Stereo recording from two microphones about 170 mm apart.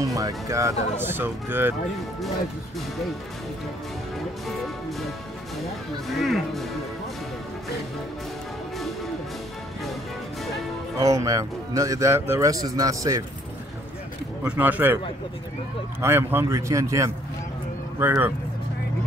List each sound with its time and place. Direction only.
0.0 s speech: 20° right (ahead or behind)
5.6 s speech: centre (ahead or behind)
11.0 s speech: 20° right (ahead or behind)
14.4 s speech: 10° right (ahead or behind)
16.0 s speech: 15° right (ahead or behind)